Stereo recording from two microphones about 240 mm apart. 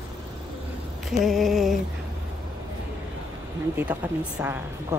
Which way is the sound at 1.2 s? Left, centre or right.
Centre.